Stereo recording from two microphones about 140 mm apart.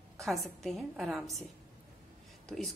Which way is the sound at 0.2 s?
Centre (ahead or behind).